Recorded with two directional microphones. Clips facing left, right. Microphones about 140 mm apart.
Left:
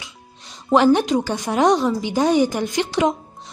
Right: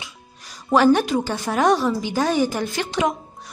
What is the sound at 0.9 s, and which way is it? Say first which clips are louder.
A woman's voice: left 2 dB; 20° left (ahead or behind).